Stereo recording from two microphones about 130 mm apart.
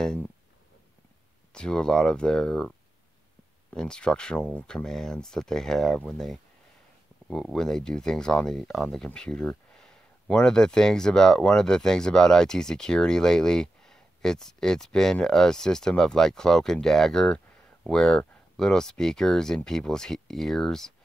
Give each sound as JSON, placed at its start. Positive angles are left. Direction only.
{"t": 1.5, "sound": "speech", "side_deg": 5}
{"t": 3.7, "sound": "speech", "side_deg": 5}